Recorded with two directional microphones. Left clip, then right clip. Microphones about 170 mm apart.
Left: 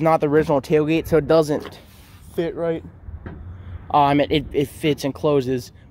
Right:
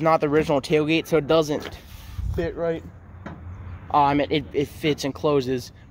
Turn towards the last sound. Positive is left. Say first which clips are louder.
# left 2 dB
turn(degrees=40)  # may be behind; listen again after turning